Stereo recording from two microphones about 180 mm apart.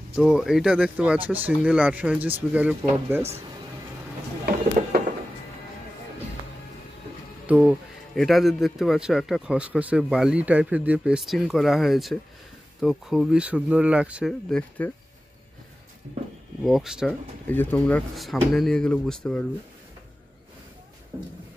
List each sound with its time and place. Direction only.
0.1 s speech: centre (ahead or behind)
7.4 s speech: 10° right (ahead or behind)
16.6 s speech: centre (ahead or behind)
17.5 s speech: 10° left (ahead or behind)
21.1 s speech: 15° right (ahead or behind)